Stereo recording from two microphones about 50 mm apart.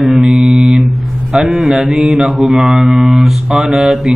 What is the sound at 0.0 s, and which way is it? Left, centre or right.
Mantra, centre.